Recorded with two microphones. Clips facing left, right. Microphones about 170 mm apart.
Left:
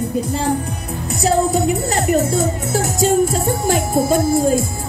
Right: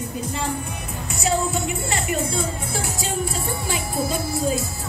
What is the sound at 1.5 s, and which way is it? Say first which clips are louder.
Music: left 8 dB; 40° left (ahead or behind).